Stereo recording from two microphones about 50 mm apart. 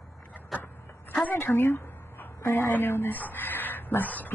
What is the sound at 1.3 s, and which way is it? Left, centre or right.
Speech, left.